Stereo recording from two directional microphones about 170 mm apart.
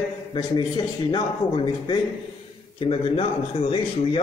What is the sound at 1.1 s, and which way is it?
A man's voice, 25° left (ahead or behind).